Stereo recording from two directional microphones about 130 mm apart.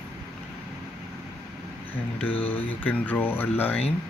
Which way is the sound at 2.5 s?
15° left (ahead or behind).